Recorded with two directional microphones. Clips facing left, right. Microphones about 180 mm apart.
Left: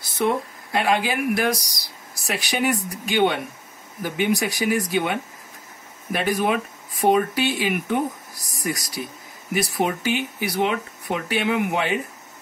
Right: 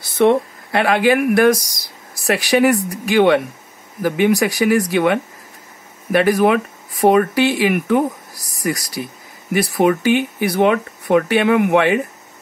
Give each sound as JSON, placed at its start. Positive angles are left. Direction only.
{"t": 0.2, "sound": "speech", "side_deg": -70}
{"t": 2.2, "sound": "speech", "side_deg": -70}
{"t": 9.5, "sound": "speech", "side_deg": -60}